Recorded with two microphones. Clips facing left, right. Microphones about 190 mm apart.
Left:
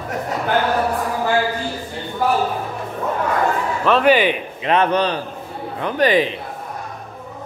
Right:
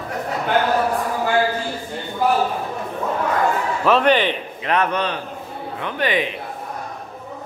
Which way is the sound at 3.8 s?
Centre (ahead or behind).